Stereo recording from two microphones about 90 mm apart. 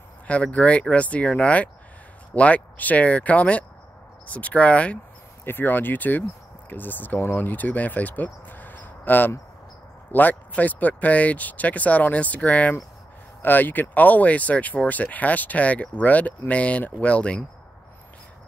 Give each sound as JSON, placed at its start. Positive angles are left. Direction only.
{"t": 0.3, "sound": "speech", "side_deg": 15}